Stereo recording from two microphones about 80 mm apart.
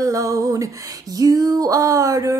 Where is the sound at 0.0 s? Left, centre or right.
Right.